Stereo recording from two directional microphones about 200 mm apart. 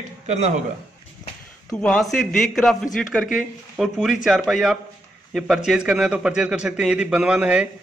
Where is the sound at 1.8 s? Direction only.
5° left (ahead or behind).